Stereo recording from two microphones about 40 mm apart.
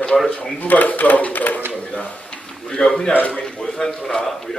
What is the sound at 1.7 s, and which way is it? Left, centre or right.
Speech, left.